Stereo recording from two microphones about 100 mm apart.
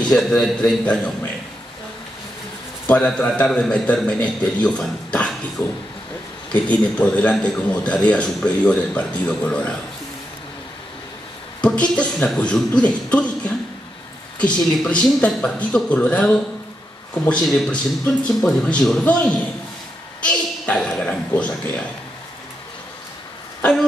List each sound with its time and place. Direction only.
0.1 s a man's voice: 5° left (ahead or behind)
3.1 s a man's voice: 10° left (ahead or behind)
11.6 s a man's voice: 10° left (ahead or behind)
23.6 s speech: 5° left (ahead or behind)